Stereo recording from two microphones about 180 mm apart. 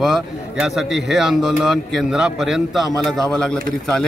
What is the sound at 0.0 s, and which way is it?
A man's voice, centre (ahead or behind).